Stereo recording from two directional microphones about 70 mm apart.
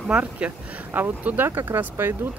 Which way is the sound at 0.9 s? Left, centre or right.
Right.